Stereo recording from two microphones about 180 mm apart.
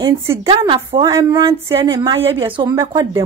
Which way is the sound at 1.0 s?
15° right (ahead or behind).